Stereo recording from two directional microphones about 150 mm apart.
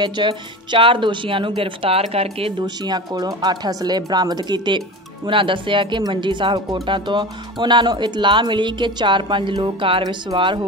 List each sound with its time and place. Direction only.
0.0 s speech: 30° right (ahead or behind)
2.6 s speech: 30° right (ahead or behind)